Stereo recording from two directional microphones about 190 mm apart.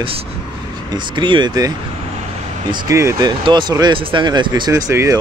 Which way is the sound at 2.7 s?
15° right (ahead or behind).